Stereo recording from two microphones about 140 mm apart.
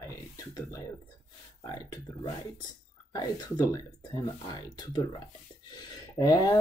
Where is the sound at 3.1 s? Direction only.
30° left (ahead or behind).